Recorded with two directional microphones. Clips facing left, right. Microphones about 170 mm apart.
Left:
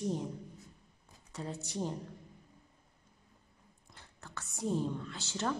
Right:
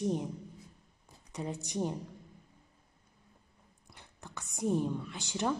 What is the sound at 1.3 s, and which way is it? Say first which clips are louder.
Speech: right 3 dB; 15° right (ahead or behind).